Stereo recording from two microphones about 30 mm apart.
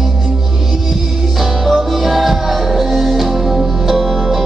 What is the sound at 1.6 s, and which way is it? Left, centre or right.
Music, centre.